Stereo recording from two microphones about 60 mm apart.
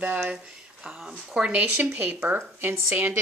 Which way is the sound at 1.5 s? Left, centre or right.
Right.